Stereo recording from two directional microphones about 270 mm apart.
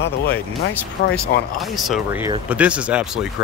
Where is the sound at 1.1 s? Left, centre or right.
Centre.